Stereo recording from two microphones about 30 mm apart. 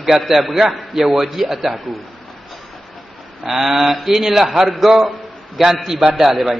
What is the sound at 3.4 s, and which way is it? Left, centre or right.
A man's voice, centre.